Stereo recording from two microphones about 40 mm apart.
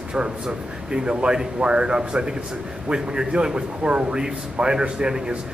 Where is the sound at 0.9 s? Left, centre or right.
Right.